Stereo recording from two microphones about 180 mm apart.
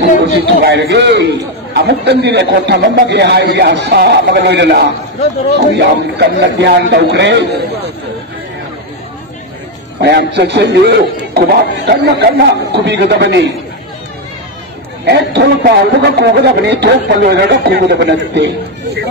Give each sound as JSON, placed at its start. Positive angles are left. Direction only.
{"t": 0.2, "sound": "a man's voice", "side_deg": -70}
{"t": 9.9, "sound": "a man's voice", "side_deg": -70}
{"t": 15.0, "sound": "a man's voice", "side_deg": -70}